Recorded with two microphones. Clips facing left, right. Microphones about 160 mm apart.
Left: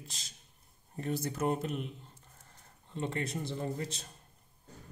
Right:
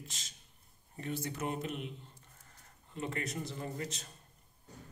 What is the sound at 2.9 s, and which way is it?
A man's voice, 30° left (ahead or behind).